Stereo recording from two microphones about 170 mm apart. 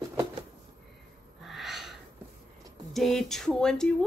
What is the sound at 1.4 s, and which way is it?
Snort, centre (ahead or behind).